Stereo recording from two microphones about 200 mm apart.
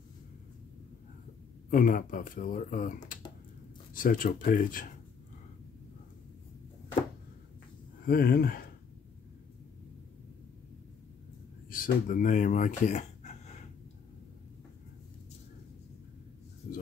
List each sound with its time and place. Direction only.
1.7 s speech: 45° left (ahead or behind)
8.0 s speech: 50° left (ahead or behind)
11.7 s speech: 45° left (ahead or behind)